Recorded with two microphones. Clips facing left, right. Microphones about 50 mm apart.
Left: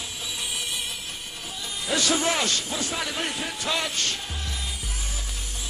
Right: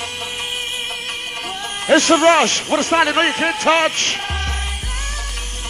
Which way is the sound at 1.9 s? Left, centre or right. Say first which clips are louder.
Right 13 dB; right.